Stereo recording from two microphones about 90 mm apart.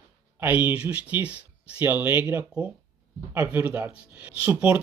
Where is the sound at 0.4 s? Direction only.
20° right (ahead or behind).